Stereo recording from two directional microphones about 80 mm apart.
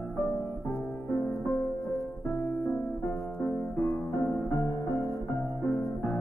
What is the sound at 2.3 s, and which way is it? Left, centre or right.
Music, left.